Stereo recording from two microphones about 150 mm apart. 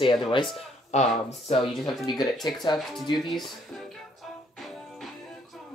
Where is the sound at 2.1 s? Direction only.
Centre (ahead or behind).